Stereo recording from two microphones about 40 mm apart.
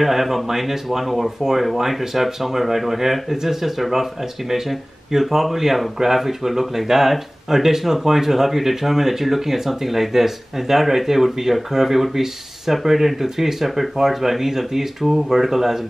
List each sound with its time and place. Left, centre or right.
0.0 s speech: centre